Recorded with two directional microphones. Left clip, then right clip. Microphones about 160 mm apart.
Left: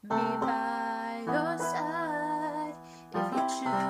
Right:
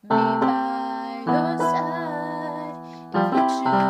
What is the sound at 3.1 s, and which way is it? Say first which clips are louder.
Music: right 10 dB; 30° right (ahead or behind).